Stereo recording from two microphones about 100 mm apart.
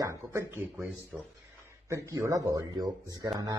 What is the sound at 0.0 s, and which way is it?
Speech, 30° right (ahead or behind).